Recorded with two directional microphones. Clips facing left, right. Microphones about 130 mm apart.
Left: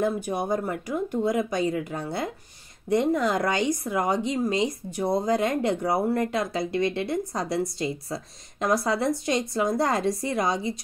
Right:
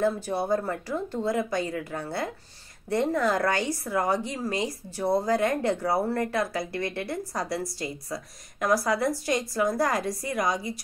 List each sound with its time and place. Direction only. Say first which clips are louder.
0.0 s speech: even; 15° left (ahead or behind)